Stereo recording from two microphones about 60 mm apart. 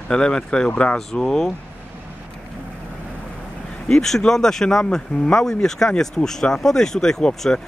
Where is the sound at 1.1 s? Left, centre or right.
Centre.